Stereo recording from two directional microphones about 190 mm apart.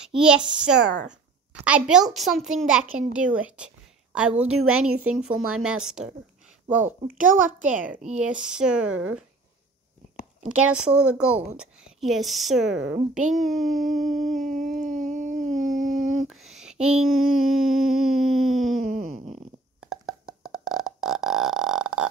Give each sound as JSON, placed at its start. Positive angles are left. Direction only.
{"t": 0.0, "sound": "a child's voice", "side_deg": -5}
{"t": 7.9, "sound": "speech", "side_deg": -40}
{"t": 8.2, "sound": "a woman's voice", "side_deg": -5}
{"t": 10.5, "sound": "a woman's voice", "side_deg": -5}
{"t": 14.5, "sound": "a sound", "side_deg": -40}
{"t": 16.3, "sound": "a sound", "side_deg": 0}
{"t": 16.8, "sound": "a woman's voice", "side_deg": 0}
{"t": 18.8, "sound": "groan", "side_deg": -45}
{"t": 19.8, "sound": "a sound", "side_deg": 0}